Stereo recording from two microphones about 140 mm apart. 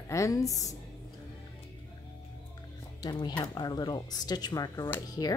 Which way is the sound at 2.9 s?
30° left (ahead or behind).